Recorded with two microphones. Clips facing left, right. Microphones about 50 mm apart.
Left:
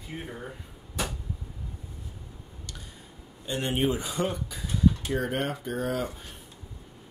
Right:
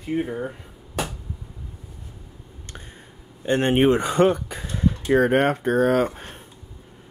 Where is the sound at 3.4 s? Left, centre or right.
Right.